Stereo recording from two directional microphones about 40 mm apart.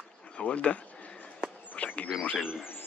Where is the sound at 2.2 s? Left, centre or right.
Left.